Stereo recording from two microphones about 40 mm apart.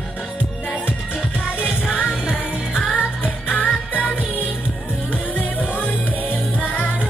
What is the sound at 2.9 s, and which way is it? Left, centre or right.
Music, left.